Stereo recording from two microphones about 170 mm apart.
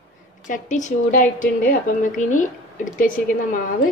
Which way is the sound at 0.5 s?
45° left (ahead or behind).